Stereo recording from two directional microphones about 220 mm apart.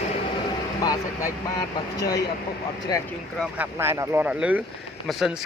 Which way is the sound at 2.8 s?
15° left (ahead or behind).